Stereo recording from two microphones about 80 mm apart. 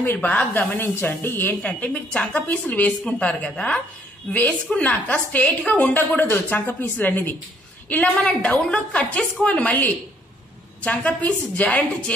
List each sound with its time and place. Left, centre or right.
0.0 s a woman's voice: left